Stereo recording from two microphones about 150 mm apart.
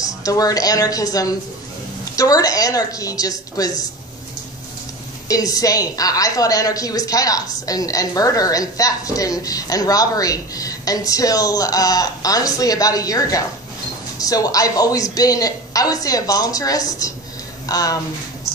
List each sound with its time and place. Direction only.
0.0 s speech: 25° left (ahead or behind)
5.3 s speech: 25° left (ahead or behind)